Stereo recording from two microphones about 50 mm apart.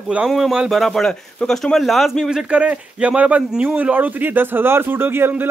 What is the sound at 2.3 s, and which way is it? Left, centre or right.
A man's voice, right.